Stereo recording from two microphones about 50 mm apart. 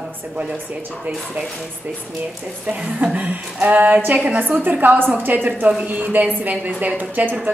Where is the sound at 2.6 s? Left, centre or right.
Right.